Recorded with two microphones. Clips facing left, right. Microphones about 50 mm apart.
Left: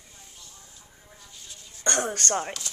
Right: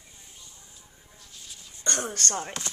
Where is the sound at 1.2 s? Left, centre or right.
Centre.